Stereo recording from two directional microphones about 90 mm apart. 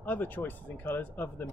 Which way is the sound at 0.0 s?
20° left (ahead or behind).